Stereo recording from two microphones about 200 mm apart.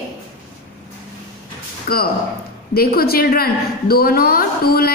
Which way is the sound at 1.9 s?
50° left (ahead or behind).